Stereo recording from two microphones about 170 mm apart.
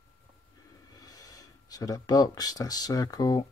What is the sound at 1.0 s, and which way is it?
Speech, 20° left (ahead or behind).